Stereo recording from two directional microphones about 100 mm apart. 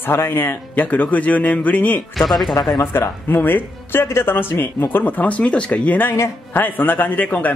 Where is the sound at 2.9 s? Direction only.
20° left (ahead or behind).